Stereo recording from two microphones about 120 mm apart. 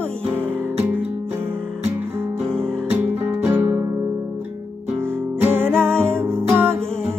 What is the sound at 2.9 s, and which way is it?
Music, 15° right (ahead or behind).